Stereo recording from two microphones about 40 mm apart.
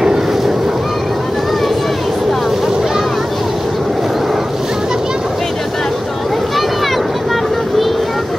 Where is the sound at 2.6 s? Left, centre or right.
Centre.